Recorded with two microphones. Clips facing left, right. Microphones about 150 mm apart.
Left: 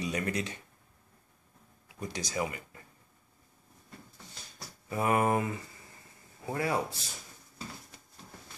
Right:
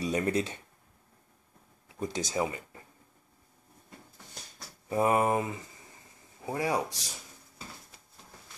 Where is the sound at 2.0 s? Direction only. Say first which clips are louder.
Right 3 dB; 25° right (ahead or behind).